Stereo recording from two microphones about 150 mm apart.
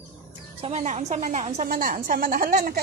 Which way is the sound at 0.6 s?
50° right (ahead or behind).